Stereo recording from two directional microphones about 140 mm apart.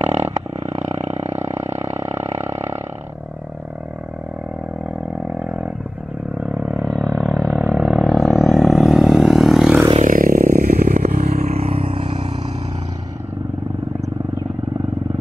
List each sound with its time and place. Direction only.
0.0 s roar: 50° right (ahead or behind)
5.4 s roaring cats: 10° right (ahead or behind)
6.4 s a sound: 5° right (ahead or behind)
10.0 s scrape: 85° right
10.6 s vehicle: 90° right
11.2 s vehicle: 55° right (ahead or behind)